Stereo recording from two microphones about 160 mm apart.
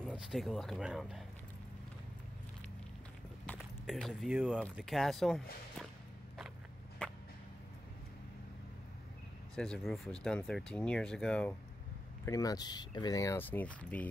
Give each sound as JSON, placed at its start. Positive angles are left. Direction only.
{"t": 0.0, "sound": "speech", "side_deg": 0}
{"t": 3.8, "sound": "speech", "side_deg": 0}
{"t": 7.0, "sound": "whip", "side_deg": 10}
{"t": 9.6, "sound": "speech", "side_deg": 0}
{"t": 12.3, "sound": "speech", "side_deg": 20}